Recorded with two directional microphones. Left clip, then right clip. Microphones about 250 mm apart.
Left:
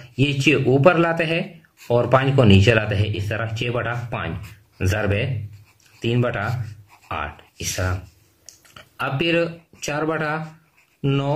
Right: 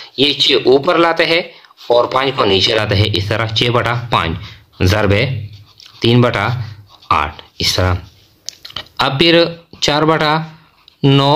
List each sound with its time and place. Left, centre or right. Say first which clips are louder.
0.1 s speech: right 7 dB; right